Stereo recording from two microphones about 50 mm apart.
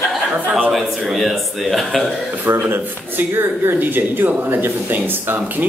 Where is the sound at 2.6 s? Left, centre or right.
Right.